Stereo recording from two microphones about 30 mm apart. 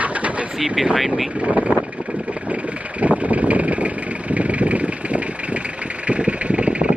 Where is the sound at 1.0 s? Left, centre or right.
Right.